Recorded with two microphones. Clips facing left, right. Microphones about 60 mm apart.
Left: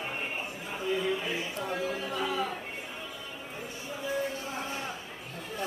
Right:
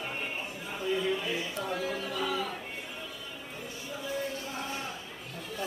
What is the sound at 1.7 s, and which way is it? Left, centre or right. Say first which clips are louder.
Music: left 2 dB; centre.